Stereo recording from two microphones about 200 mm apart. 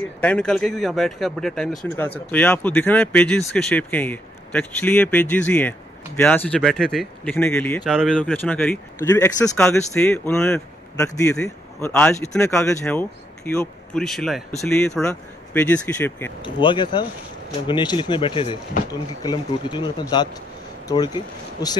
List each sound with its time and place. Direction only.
0.2 s speech: 5° left (ahead or behind)
7.9 s speech: 5° right (ahead or behind)
8.2 s speech: 5° left (ahead or behind)
16.4 s speech: 25° left (ahead or behind)